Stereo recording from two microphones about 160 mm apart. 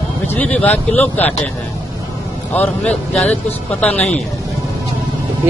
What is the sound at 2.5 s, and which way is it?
Speech, 10° left (ahead or behind).